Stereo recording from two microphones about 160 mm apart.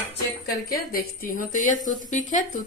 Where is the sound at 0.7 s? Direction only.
65° left (ahead or behind).